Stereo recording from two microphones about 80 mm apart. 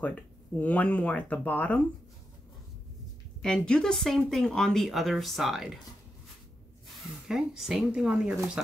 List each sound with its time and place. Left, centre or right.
0.0 s speech: centre
3.4 s speech: centre
7.2 s speech: centre